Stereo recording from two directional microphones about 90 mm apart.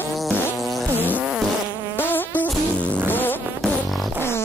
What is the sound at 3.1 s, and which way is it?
Fart, 20° left (ahead or behind).